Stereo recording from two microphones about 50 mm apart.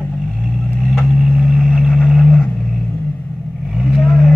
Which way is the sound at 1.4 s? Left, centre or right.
Centre.